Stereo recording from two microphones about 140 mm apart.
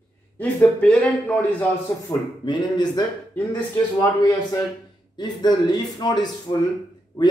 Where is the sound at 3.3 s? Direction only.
10° left (ahead or behind).